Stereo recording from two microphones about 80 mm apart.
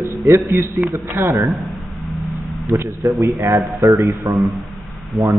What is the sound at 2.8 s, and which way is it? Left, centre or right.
Speech, right.